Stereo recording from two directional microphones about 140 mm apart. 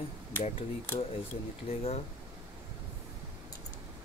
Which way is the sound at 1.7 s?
45° left (ahead or behind).